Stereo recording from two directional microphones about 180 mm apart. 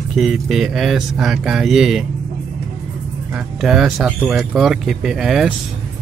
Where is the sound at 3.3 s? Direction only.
Centre (ahead or behind).